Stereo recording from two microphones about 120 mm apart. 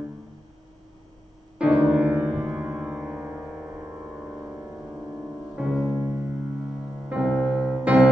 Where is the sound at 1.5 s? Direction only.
10° right (ahead or behind).